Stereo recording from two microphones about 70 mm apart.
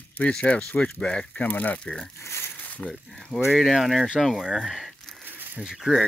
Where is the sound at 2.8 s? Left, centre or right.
Centre.